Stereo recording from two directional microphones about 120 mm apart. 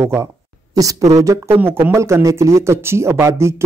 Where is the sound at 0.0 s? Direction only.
25° right (ahead or behind).